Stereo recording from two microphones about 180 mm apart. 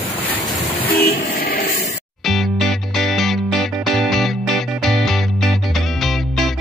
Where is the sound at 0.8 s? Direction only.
60° left (ahead or behind).